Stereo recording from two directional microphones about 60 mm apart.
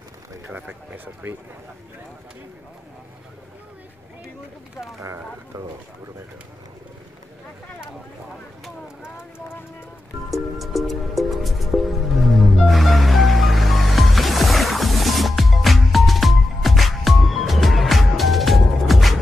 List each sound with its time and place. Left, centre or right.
0.9 s speech: right
10.3 s music: centre